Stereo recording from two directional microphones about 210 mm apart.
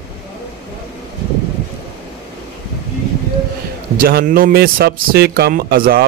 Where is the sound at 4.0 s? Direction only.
45° right (ahead or behind).